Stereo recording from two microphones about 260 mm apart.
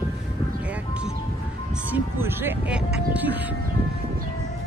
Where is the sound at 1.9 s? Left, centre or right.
Centre.